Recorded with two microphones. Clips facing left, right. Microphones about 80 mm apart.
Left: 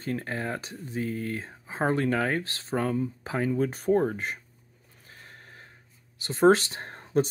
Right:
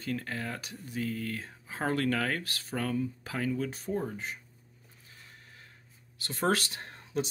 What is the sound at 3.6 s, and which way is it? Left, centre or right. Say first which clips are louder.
Speech: left 10 dB; left.